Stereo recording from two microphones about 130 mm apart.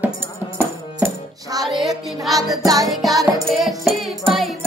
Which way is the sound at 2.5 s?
30° right (ahead or behind).